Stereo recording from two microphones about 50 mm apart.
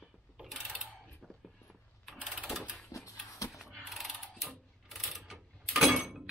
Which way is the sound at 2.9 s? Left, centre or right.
Left.